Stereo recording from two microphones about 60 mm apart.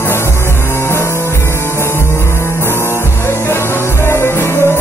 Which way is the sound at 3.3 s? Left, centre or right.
Left.